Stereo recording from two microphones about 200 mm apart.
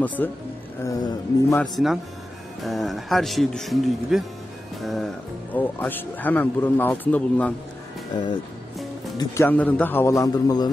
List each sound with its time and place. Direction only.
0.0 s speech: 10° left (ahead or behind)
1.6 s speech: centre (ahead or behind)
9.2 s speech: 15° left (ahead or behind)